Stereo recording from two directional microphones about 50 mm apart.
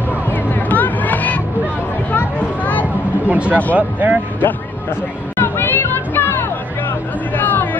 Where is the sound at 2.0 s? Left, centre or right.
Left.